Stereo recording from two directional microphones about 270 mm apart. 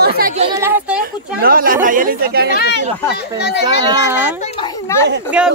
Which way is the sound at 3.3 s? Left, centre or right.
Left.